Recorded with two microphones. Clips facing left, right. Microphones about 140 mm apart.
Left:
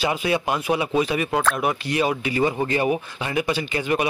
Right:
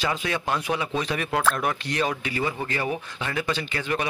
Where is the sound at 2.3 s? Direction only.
20° left (ahead or behind).